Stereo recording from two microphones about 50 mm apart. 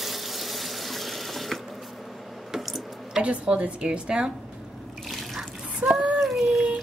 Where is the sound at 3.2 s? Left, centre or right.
Right.